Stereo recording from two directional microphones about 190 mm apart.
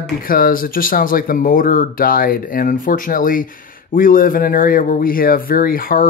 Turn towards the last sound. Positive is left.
turn(degrees=50)  # may be behind; listen again after turning